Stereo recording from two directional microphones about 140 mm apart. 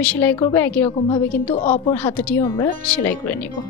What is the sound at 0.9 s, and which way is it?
Speech, 35° left (ahead or behind).